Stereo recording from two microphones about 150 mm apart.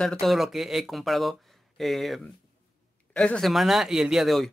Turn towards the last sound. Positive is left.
turn(degrees=0)  # may be behind; listen again after turning